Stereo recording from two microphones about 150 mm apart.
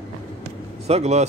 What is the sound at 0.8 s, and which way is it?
Speech, 45° right (ahead or behind).